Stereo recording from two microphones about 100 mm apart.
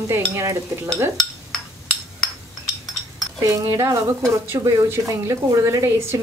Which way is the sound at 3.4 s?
30° right (ahead or behind).